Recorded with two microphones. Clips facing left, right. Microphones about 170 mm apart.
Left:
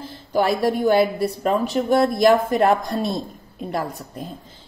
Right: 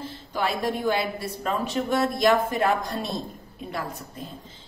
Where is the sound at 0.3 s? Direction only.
45° left (ahead or behind).